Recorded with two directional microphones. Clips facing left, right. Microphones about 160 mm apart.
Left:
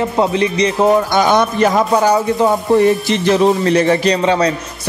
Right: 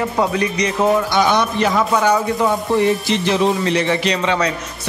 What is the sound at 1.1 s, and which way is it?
A man's voice, 50° left (ahead or behind).